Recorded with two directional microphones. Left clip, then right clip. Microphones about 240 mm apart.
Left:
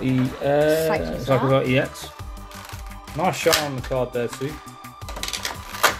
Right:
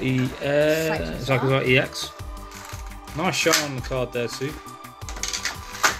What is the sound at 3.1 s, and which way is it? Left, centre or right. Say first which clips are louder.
Speech: left 1 dB; centre.